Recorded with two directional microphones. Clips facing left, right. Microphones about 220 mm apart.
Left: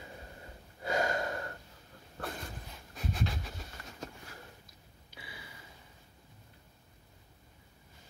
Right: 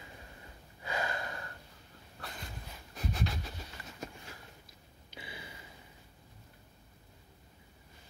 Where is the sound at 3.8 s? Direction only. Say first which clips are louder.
Even; 5° right (ahead or behind).